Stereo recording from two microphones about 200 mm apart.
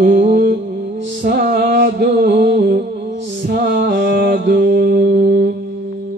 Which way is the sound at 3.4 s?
45° right (ahead or behind).